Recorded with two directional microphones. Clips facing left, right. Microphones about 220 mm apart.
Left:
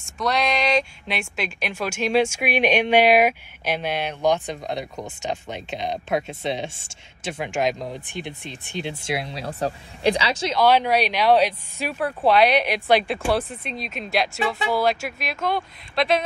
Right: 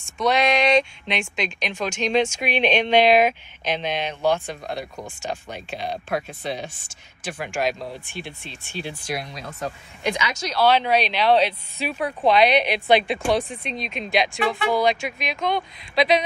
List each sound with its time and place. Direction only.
0.2 s a woman's voice: centre (ahead or behind); by 10.5 s 30° left (ahead or behind)
10.5 s speech: 10° left (ahead or behind)
12.0 s speech: 10° right (ahead or behind)
12.3 s speech: 10° left (ahead or behind)